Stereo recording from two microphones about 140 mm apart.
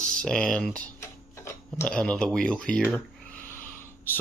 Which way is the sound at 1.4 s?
20° left (ahead or behind).